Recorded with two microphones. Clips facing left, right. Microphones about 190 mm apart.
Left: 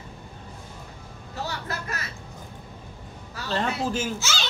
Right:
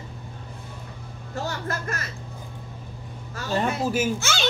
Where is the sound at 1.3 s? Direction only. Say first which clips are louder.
Right 3 dB; 50° right (ahead or behind).